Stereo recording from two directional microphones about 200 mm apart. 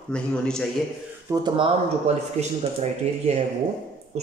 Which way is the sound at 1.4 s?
25° right (ahead or behind).